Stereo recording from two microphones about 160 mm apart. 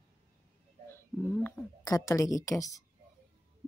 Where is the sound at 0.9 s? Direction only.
10° left (ahead or behind).